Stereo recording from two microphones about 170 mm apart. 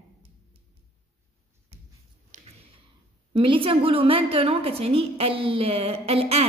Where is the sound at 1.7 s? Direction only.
35° right (ahead or behind).